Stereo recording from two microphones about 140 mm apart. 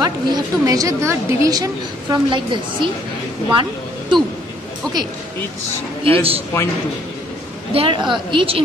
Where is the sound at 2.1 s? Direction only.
35° right (ahead or behind).